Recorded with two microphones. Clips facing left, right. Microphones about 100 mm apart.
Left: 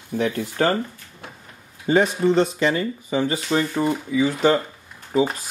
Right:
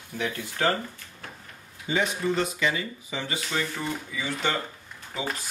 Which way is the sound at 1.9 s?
45° left (ahead or behind).